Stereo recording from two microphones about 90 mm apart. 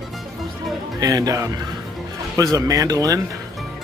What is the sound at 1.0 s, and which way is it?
Speech, 40° right (ahead or behind).